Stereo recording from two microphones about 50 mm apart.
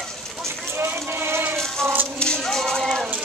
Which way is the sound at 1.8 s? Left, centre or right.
Right.